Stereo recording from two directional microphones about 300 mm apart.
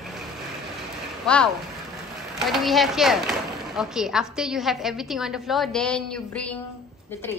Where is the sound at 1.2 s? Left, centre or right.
Centre.